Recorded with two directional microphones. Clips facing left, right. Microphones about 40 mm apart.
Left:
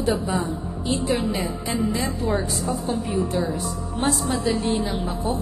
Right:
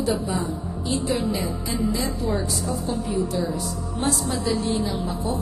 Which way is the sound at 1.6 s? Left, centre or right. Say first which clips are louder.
Left 2 dB; left.